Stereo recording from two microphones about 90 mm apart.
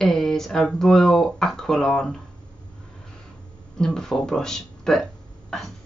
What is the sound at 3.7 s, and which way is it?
Speech, 5° left (ahead or behind).